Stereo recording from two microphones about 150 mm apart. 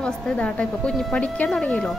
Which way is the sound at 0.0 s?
5° left (ahead or behind).